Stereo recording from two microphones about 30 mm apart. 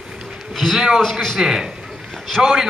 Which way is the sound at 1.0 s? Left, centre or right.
Centre.